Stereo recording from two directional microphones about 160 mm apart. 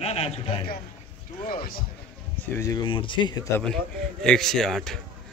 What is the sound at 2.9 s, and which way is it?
Speech, 30° left (ahead or behind).